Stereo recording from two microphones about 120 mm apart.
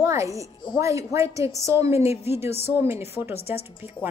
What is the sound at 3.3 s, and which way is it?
Speech, 55° left (ahead or behind).